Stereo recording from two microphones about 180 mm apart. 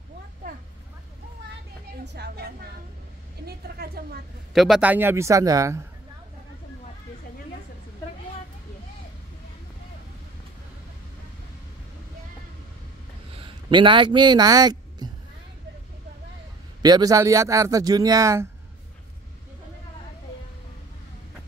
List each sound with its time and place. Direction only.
2.1 s a woman's voice: 65° right (ahead or behind)
4.6 s a man's voice: 5° right (ahead or behind)
13.4 s a man's voice: 25° right (ahead or behind)
16.8 s speech: 20° right (ahead or behind)